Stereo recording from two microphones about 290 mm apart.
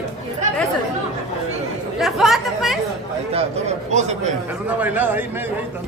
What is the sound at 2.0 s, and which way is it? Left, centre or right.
Speech, centre.